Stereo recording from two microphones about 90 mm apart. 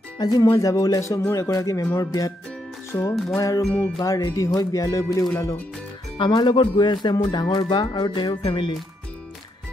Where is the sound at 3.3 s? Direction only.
35° left (ahead or behind).